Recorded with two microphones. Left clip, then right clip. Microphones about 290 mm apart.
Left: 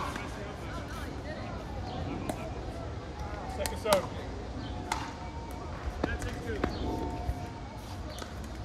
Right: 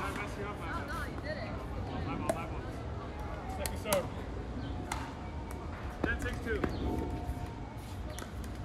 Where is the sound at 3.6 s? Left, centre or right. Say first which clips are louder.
Left 7 dB; centre.